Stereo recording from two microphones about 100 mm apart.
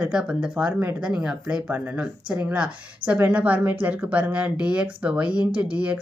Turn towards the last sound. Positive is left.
turn(degrees=-15)  # may be behind; listen again after turning